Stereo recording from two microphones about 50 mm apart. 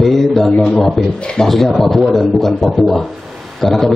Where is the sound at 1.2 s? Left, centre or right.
Centre.